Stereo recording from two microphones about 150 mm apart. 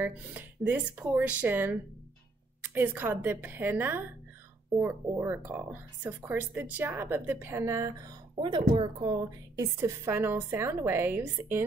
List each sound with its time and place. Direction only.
0.0 s speech: 15° right (ahead or behind)
8.4 s a woman's voice: 30° right (ahead or behind); by 11.6 s 15° right (ahead or behind)